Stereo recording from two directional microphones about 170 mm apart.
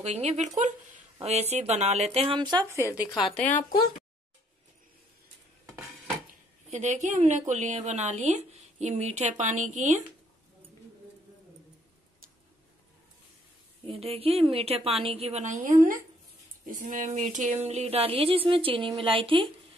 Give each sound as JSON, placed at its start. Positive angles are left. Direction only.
{"t": 0.0, "sound": "a woman's voice", "side_deg": -40}
{"t": 2.7, "sound": "speech", "side_deg": -15}
{"t": 6.7, "sound": "a woman's voice", "side_deg": -45}
{"t": 13.8, "sound": "a woman's voice", "side_deg": -35}
{"t": 16.6, "sound": "a woman's voice", "side_deg": -50}